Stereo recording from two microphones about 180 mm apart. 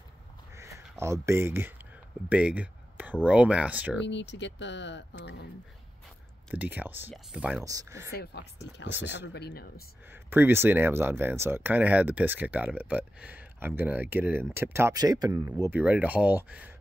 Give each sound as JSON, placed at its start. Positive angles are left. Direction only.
{"t": 0.6, "sound": "speech", "side_deg": -15}
{"t": 2.2, "sound": "a sound", "side_deg": -5}
{"t": 3.3, "sound": "speech", "side_deg": -5}
{"t": 4.0, "sound": "speech", "side_deg": 80}
{"t": 6.5, "sound": "speech", "side_deg": -10}
{"t": 7.6, "sound": "speech", "side_deg": -15}
{"t": 8.1, "sound": "speech", "side_deg": 65}
{"t": 10.1, "sound": "speech", "side_deg": -10}